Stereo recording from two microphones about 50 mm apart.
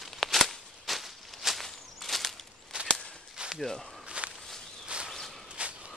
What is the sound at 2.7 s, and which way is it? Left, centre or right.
Whip, centre.